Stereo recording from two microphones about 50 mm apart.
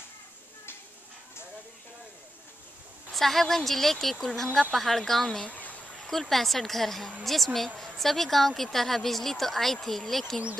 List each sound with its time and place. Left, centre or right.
3.2 s a woman's voice: centre
5.5 s a sound: left
6.0 s a woman's voice: centre